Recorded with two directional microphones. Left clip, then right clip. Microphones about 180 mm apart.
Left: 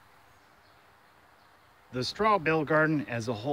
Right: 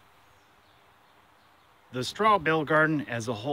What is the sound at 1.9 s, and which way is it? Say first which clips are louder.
Speech: right 2 dB; 10° right (ahead or behind).